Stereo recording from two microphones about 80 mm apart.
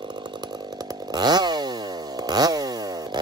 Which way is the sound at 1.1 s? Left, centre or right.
Right.